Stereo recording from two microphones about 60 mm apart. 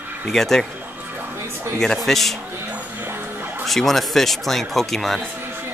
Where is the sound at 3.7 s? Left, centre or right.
Centre.